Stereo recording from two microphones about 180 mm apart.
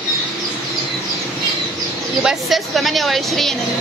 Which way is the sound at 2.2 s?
Centre (ahead or behind).